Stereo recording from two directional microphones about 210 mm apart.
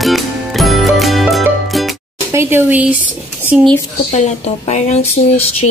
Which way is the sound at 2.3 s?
10° right (ahead or behind).